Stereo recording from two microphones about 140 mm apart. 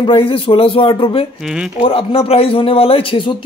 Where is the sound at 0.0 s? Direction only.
40° left (ahead or behind).